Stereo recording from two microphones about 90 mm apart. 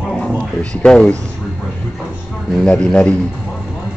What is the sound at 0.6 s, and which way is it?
Speech, 10° left (ahead or behind).